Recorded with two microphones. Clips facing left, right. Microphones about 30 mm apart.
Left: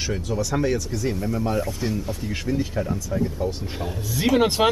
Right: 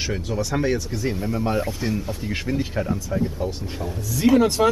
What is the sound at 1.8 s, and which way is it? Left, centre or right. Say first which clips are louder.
Speech: right 1 dB; centre.